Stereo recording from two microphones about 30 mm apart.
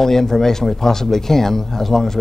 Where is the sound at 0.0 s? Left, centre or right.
Centre.